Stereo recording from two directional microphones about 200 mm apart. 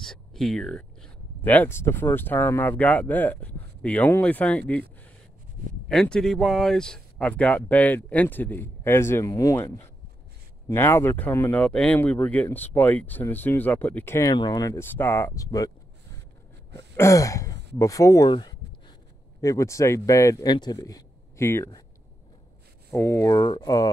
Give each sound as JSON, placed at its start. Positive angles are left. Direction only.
{"t": 0.0, "sound": "speech", "side_deg": 0}
{"t": 5.9, "sound": "speech", "side_deg": 5}
{"t": 16.7, "sound": "throat clearing", "side_deg": 15}
{"t": 17.7, "sound": "speech", "side_deg": 15}
{"t": 22.8, "sound": "speech", "side_deg": 10}